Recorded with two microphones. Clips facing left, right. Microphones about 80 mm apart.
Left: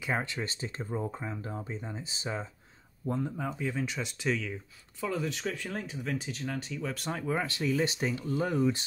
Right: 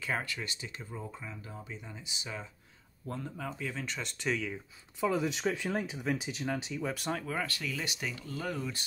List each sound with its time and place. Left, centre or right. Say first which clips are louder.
0.0 s speech: left 3 dB; left
3.1 s speech: left 6 dB; centre
5.0 s speech: right 3 dB; centre
7.1 s speech: left 6 dB; centre
7.3 s speech: left 6 dB; left